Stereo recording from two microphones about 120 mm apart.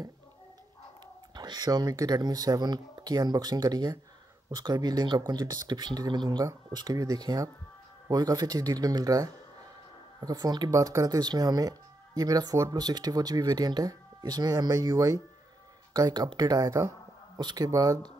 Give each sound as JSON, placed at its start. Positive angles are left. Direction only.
{"t": 1.3, "sound": "speech", "side_deg": -35}
{"t": 17.4, "sound": "speech", "side_deg": -40}